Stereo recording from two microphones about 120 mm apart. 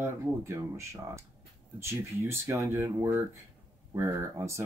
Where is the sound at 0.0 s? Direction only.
20° right (ahead or behind).